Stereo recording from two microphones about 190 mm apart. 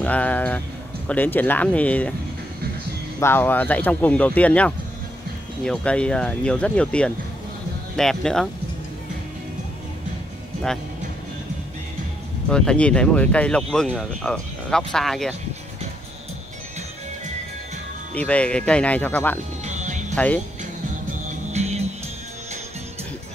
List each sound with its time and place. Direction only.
0.0 s speech: 5° left (ahead or behind)
3.2 s speech: 10° left (ahead or behind)
12.4 s speech: 5° left (ahead or behind)
18.1 s speech: 5° left (ahead or behind)
19.6 s music: 40° right (ahead or behind)
21.5 s music: 35° right (ahead or behind)